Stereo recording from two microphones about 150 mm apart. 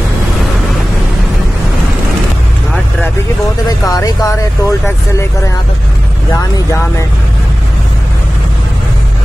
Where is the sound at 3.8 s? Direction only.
25° left (ahead or behind).